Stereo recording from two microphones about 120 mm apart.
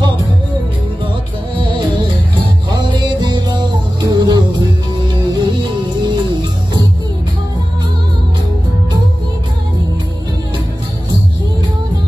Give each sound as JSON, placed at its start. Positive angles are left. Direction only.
{"t": 2.7, "sound": "music", "side_deg": -35}